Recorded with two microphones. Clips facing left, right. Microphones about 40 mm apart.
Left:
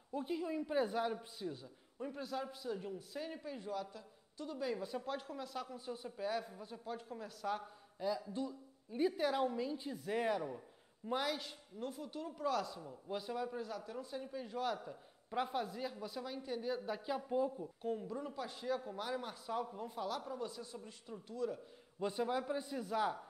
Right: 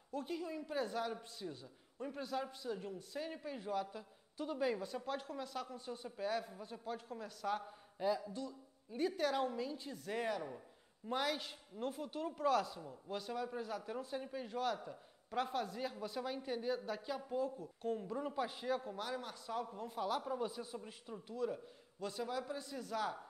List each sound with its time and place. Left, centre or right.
0.1 s a woman's voice: centre
3.8 s a woman's voice: centre
4.7 s a man's voice: centre
8.0 s speech: centre
8.3 s a woman's voice: centre
12.8 s a man's voice: centre
13.5 s speech: centre
14.5 s a man's voice: centre
16.7 s a woman's voice: centre
18.0 s speech: centre
18.8 s speech: centre
22.0 s a woman's voice: centre